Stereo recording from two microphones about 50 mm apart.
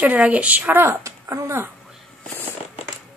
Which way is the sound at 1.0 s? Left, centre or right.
Right.